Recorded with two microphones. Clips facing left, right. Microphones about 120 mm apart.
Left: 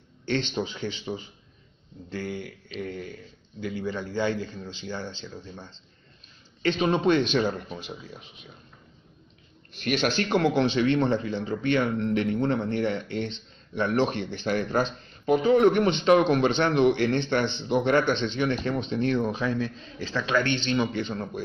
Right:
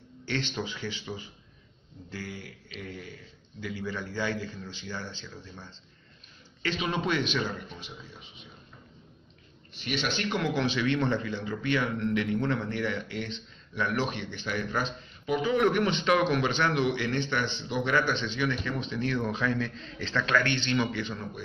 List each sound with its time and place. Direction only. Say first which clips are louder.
0.6 s speech: left 4 dB; 25° left (ahead or behind)
6.8 s speech: left 7 dB; 30° left (ahead or behind)
9.8 s speech: left 6 dB; 40° left (ahead or behind); by 21.1 s 20° left (ahead or behind)